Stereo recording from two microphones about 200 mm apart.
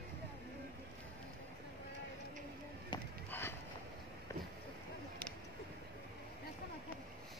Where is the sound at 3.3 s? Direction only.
10° left (ahead or behind).